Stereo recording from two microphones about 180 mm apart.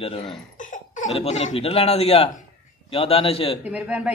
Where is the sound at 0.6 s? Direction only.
45° left (ahead or behind).